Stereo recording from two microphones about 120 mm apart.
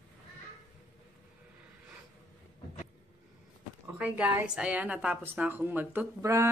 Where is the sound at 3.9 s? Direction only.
10° right (ahead or behind).